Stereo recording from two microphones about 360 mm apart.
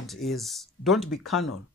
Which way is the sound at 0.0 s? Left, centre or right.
Centre.